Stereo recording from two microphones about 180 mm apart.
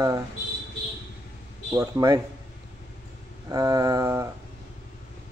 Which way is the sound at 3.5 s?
20° right (ahead or behind).